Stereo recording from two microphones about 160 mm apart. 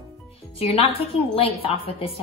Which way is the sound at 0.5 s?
40° left (ahead or behind).